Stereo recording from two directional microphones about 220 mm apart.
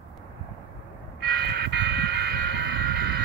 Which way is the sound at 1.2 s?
50° right (ahead or behind).